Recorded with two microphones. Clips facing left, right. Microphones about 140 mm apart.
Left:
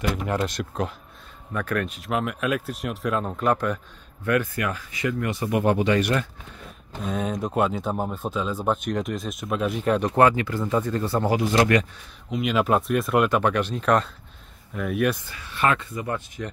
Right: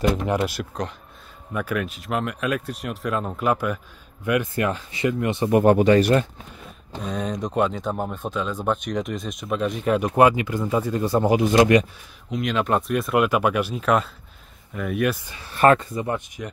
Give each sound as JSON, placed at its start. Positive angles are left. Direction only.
{"t": 0.6, "sound": "speech", "side_deg": 0}
{"t": 4.6, "sound": "speech", "side_deg": -25}
{"t": 5.5, "sound": "speech", "side_deg": -45}
{"t": 5.9, "sound": "speech", "side_deg": -35}
{"t": 7.0, "sound": "speech", "side_deg": 5}
{"t": 12.3, "sound": "speech", "side_deg": 5}
{"t": 15.4, "sound": "speech", "side_deg": -40}
{"t": 16.4, "sound": "speech", "side_deg": -10}